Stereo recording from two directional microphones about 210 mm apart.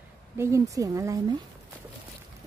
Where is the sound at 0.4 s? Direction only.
15° right (ahead or behind).